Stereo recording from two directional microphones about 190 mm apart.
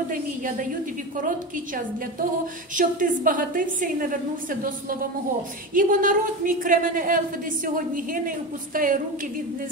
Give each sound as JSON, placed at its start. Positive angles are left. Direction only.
{"t": 0.1, "sound": "a woman's voice", "side_deg": -45}
{"t": 2.7, "sound": "a woman's voice", "side_deg": -45}